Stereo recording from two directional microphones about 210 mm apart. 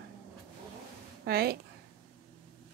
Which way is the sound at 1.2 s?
50° right (ahead or behind).